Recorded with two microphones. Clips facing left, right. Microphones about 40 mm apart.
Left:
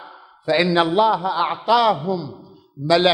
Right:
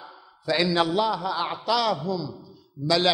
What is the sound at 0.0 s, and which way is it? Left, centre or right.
A man's voice, left.